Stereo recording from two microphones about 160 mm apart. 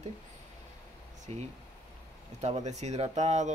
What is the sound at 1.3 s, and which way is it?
Speech, 40° right (ahead or behind).